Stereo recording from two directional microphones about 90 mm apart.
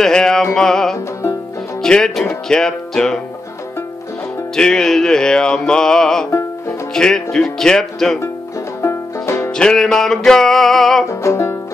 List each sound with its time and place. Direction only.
0.0 s music: 5° left (ahead or behind)
4.6 s music: 5° left (ahead or behind)
8.8 s banjo: 30° left (ahead or behind)
9.5 s music: 5° left (ahead or behind)
11.1 s music: 35° left (ahead or behind)